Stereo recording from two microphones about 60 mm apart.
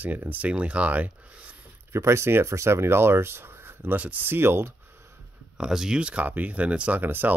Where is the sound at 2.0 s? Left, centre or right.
Right.